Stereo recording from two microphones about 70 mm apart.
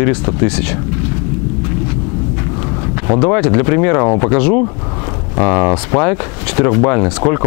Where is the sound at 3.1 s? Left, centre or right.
Centre.